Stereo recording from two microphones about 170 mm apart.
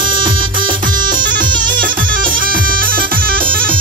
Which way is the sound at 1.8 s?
55° right (ahead or behind).